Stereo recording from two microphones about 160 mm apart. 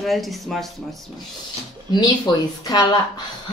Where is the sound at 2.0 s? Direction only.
25° left (ahead or behind).